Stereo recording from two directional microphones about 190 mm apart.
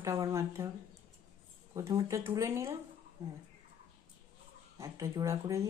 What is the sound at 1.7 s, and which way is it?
Speech, 20° right (ahead or behind).